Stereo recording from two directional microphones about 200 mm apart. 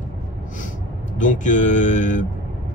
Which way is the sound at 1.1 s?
40° left (ahead or behind).